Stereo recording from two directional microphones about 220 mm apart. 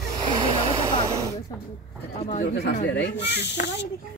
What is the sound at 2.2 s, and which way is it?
Speech, 30° left (ahead or behind).